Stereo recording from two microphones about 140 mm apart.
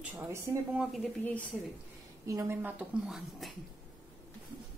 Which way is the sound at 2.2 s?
20° right (ahead or behind).